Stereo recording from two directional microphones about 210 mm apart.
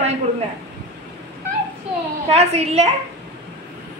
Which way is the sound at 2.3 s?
30° right (ahead or behind).